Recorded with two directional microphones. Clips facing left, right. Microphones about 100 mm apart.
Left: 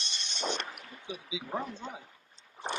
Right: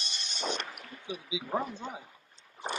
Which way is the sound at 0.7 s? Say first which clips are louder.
Right 2 dB; 5° right (ahead or behind).